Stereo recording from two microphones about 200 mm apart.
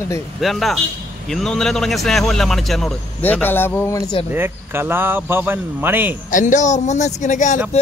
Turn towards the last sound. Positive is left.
turn(degrees=40)  # may be behind; listen again after turning